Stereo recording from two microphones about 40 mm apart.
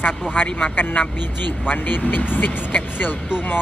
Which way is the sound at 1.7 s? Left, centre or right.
Left.